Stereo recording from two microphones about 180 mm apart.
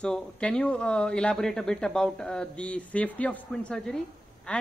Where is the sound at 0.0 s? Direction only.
5° left (ahead or behind).